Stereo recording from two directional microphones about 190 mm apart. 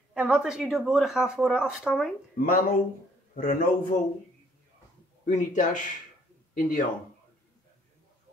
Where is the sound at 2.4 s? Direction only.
50° left (ahead or behind).